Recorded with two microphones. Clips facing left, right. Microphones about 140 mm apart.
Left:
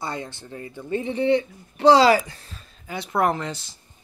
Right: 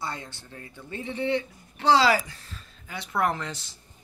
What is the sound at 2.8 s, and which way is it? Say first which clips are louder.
Speech: left 4 dB; 30° left (ahead or behind).